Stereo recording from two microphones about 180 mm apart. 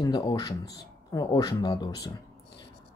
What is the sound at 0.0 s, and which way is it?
Speech, 25° left (ahead or behind).